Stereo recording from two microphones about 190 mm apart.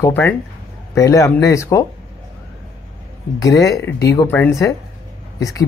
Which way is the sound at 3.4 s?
15° left (ahead or behind).